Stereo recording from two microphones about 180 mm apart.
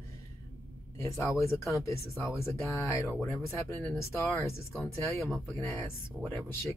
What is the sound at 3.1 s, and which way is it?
Speech, 15° left (ahead or behind).